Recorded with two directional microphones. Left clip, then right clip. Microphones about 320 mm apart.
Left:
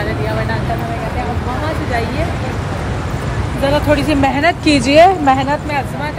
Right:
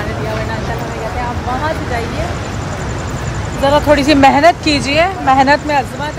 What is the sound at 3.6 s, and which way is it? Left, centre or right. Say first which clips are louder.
Speech: right 4 dB; centre.